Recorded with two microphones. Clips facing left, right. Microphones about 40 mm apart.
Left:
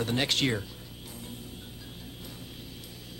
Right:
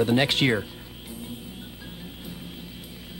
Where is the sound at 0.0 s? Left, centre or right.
Centre.